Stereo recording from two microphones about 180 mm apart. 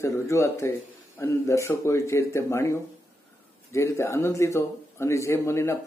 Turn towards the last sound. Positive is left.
turn(degrees=15)  # may be behind; listen again after turning